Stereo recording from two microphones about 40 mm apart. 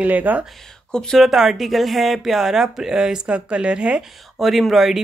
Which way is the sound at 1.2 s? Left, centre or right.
Centre.